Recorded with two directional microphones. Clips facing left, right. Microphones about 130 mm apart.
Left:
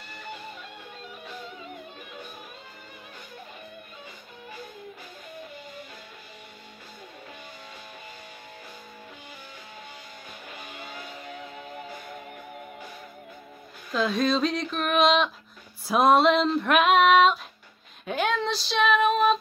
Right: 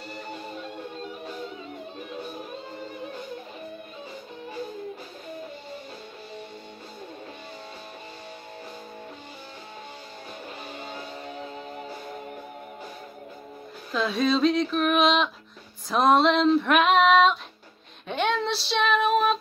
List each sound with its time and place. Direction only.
10.7 s music: 35° right (ahead or behind)
13.9 s female singing: centre (ahead or behind)